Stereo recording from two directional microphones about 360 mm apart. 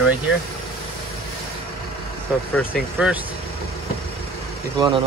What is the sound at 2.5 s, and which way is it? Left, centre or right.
Speech, centre.